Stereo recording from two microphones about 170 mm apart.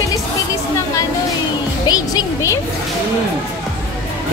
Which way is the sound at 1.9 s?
20° left (ahead or behind).